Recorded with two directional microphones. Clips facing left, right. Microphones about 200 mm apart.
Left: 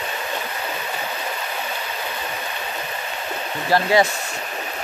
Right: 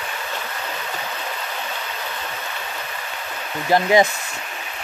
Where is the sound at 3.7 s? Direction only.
20° right (ahead or behind).